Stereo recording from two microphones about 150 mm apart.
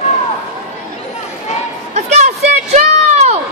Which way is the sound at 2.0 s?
50° right (ahead or behind).